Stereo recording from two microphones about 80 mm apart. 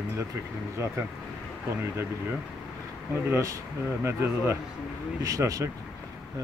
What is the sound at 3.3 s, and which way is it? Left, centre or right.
Speech, right.